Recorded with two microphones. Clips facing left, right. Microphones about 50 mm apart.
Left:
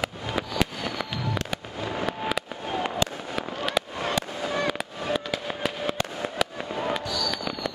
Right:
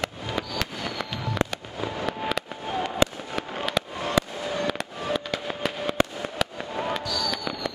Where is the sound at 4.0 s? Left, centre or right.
Left.